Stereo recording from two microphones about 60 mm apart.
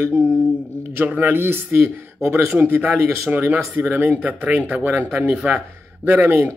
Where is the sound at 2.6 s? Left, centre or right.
Right.